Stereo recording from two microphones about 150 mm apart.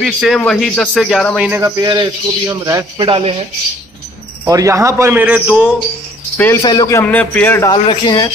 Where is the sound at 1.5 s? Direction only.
25° right (ahead or behind).